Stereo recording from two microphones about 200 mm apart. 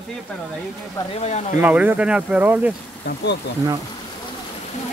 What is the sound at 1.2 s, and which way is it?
Speech, 35° left (ahead or behind).